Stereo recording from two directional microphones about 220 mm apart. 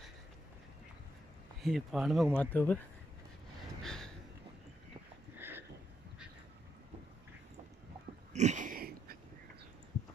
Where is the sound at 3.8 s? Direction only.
5° left (ahead or behind).